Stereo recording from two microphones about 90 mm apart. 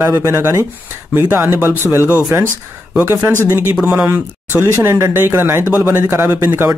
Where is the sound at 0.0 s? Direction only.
30° right (ahead or behind).